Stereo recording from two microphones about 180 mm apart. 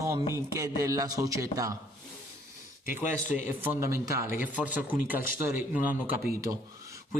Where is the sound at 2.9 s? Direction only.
10° right (ahead or behind).